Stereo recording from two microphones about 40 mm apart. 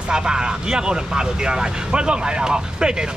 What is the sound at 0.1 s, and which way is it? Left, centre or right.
Speech, centre.